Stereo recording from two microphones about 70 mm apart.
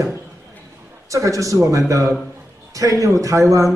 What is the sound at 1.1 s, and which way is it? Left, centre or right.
A woman's voice, right.